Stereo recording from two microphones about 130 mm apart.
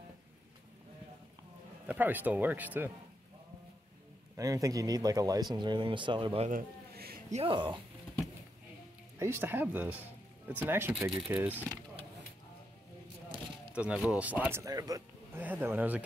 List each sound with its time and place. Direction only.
1.9 s speech: 15° right (ahead or behind)
4.4 s speech: 25° right (ahead or behind)
7.2 s a sound: 65° right (ahead or behind)
7.4 s speech: 40° right (ahead or behind)
9.2 s speech: 15° right (ahead or behind)
13.7 s speech: 10° right (ahead or behind)
14.6 s a man's voice: 25° right (ahead or behind)